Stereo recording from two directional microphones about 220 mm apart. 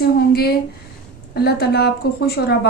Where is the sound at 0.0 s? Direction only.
45° left (ahead or behind).